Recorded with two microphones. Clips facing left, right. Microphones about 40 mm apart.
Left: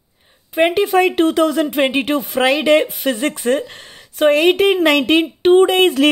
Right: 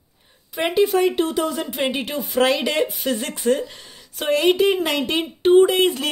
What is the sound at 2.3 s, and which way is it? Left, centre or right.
Speech, left.